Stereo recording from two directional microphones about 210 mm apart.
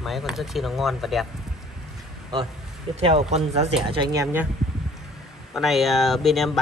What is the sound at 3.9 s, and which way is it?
Speech, 20° right (ahead or behind).